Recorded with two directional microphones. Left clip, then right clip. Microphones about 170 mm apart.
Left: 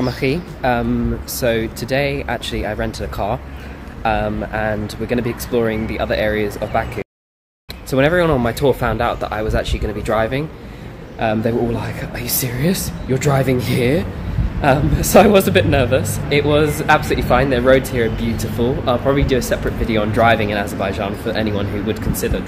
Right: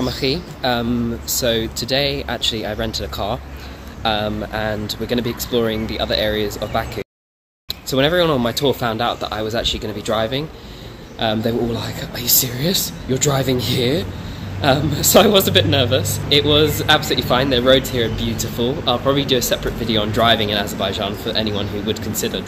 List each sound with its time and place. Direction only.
0.0 s a man's voice: 15° left (ahead or behind)
7.9 s a man's voice: centre (ahead or behind)